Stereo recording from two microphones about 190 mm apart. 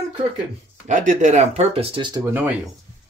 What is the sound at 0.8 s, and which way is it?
Speech, 40° right (ahead or behind).